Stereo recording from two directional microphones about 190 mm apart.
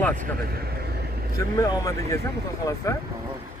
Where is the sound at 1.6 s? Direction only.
20° left (ahead or behind).